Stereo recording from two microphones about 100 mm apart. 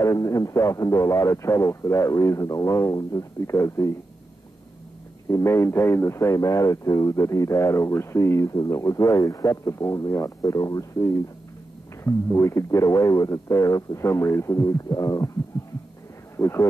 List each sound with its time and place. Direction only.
0.0 s speech: 35° left (ahead or behind)
5.3 s speech: 30° left (ahead or behind)
16.3 s speech: 25° left (ahead or behind)